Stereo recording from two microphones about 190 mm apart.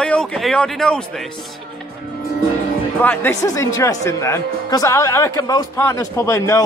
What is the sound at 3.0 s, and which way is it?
Speech, 10° left (ahead or behind).